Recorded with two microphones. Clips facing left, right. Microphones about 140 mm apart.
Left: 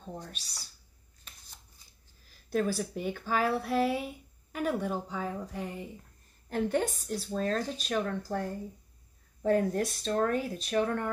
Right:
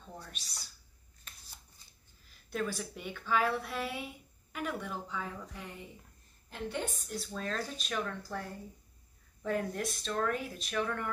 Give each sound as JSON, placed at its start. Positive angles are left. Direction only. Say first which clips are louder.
{"t": 0.0, "sound": "speech", "louder": "left 6 dB", "side_deg": 35}
{"t": 2.5, "sound": "speech", "louder": "left 6 dB", "side_deg": 40}